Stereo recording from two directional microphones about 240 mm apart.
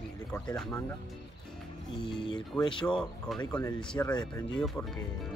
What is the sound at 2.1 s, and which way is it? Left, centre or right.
Speech, centre.